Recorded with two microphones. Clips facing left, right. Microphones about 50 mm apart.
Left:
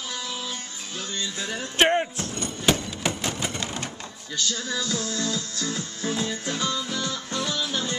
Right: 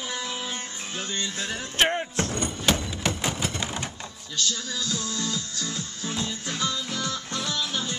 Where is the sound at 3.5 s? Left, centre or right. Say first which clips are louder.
Even; centre.